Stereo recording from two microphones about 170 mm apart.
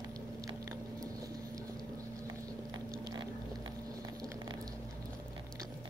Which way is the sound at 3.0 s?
25° right (ahead or behind).